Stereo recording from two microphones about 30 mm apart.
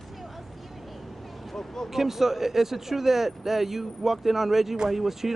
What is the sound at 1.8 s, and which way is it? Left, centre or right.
Speech, centre.